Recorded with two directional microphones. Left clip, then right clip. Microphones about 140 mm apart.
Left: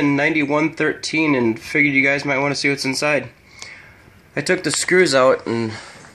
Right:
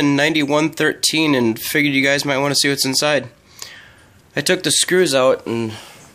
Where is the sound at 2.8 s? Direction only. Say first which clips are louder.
Right 2 dB; 10° right (ahead or behind).